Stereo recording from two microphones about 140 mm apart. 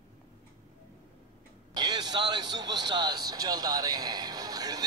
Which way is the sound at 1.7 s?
30° right (ahead or behind).